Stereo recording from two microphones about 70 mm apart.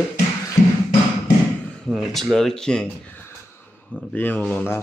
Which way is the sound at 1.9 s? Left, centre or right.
Centre.